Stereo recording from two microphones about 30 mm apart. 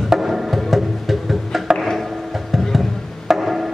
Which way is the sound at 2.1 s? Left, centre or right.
Centre.